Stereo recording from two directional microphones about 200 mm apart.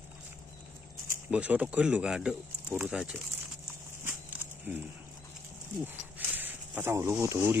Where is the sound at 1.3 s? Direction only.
5° right (ahead or behind).